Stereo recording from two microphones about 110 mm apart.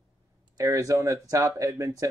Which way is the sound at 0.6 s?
30° right (ahead or behind).